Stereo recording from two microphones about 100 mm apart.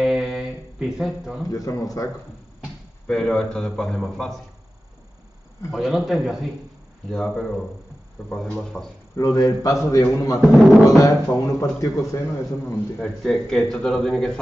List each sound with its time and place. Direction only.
0.0 s a sound: centre (ahead or behind)
1.5 s a man's voice: 35° left (ahead or behind)
3.1 s a man's voice: 5° left (ahead or behind)
5.7 s a man's voice: centre (ahead or behind)
9.1 s a man's voice: 35° left (ahead or behind)
10.4 s a man's voice: centre (ahead or behind)
10.9 s a man's voice: 35° left (ahead or behind)
12.9 s a man's voice: 5° left (ahead or behind)